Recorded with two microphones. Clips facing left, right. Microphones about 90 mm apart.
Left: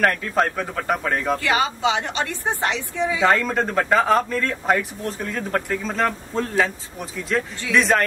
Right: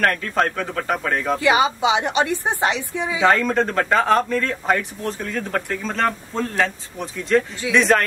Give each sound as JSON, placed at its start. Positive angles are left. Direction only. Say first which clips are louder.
{"t": 0.0, "sound": "speech", "louder": "even", "side_deg": 5}
{"t": 1.4, "sound": "a woman's voice", "louder": "right 3 dB", "side_deg": -15}
{"t": 3.2, "sound": "speech", "louder": "right 3 dB", "side_deg": 0}